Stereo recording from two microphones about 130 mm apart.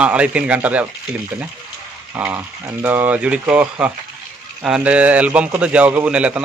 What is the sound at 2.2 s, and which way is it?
A man's voice, 10° right (ahead or behind).